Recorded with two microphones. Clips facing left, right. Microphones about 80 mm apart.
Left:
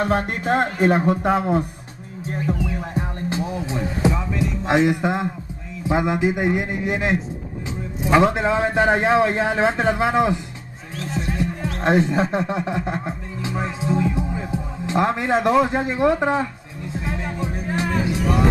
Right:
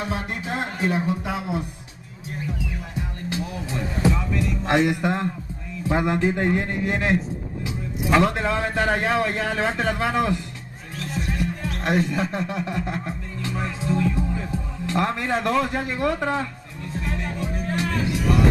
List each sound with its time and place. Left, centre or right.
0.0 s speech: left
2.2 s music: left
4.0 s music: centre
4.5 s music: centre
5.9 s a man's voice: centre
11.0 s music: left